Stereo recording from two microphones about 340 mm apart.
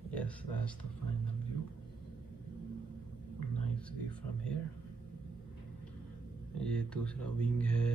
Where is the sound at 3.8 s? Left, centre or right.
Centre.